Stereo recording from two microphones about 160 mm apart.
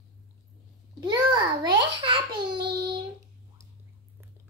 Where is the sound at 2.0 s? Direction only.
30° right (ahead or behind).